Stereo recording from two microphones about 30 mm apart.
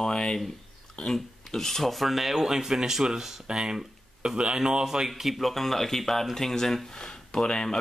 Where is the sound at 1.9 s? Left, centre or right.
Centre.